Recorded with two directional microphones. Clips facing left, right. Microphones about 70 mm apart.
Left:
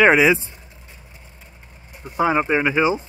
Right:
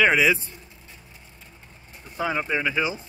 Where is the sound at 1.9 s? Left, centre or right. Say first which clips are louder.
Left 8 dB; centre.